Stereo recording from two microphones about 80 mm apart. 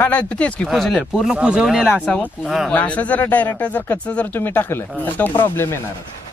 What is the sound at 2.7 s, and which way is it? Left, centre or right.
Speech, centre.